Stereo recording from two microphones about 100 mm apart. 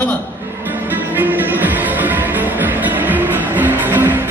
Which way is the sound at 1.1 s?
20° right (ahead or behind).